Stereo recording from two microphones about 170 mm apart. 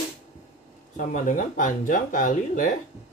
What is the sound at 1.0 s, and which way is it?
Speech, 50° left (ahead or behind).